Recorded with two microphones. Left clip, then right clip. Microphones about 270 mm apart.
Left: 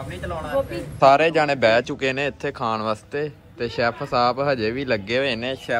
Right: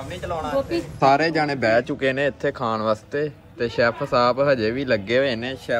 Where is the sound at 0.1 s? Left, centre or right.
Right.